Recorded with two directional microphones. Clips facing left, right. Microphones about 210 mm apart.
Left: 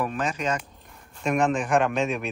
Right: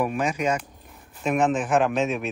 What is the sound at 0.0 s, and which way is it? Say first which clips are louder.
Speech: right 3 dB; 10° right (ahead or behind).